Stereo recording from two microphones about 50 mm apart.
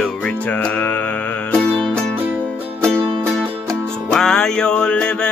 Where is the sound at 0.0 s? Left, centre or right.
Centre.